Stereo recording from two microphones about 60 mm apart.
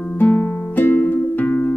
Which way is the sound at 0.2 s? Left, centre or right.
Left.